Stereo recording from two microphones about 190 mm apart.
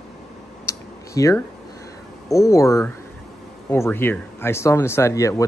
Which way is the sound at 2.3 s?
15° left (ahead or behind).